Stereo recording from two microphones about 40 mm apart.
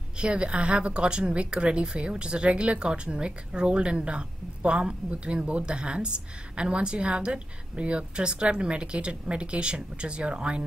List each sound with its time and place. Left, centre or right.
0.2 s speech: right